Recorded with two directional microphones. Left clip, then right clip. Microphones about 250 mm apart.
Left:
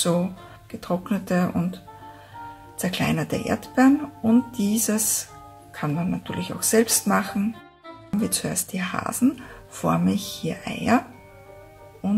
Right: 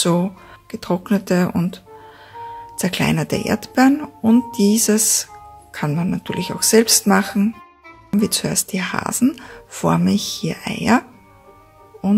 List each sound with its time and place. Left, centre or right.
0.0 s speech: right
2.8 s speech: right